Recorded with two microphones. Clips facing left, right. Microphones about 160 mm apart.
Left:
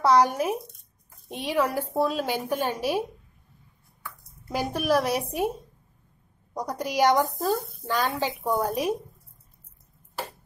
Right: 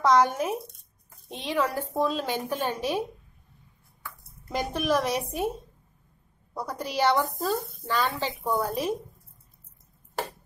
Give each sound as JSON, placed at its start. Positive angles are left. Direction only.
{"t": 0.0, "sound": "a woman's voice", "side_deg": 10}
{"t": 4.5, "sound": "a woman's voice", "side_deg": 10}
{"t": 6.5, "sound": "a woman's voice", "side_deg": 15}